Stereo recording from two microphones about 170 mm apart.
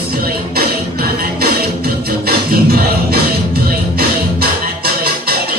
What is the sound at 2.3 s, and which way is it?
Music, 65° right (ahead or behind).